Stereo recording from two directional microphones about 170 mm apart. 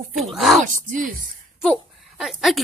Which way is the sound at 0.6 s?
50° right (ahead or behind).